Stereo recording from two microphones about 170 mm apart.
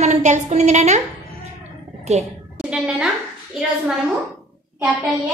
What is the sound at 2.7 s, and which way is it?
A woman's voice, centre (ahead or behind).